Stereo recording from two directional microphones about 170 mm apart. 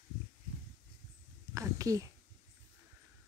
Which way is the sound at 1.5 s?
20° right (ahead or behind).